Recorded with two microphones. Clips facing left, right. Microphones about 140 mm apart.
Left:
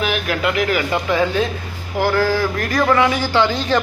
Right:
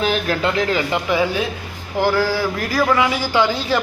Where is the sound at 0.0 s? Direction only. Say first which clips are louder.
Right 1 dB; 30° right (ahead or behind).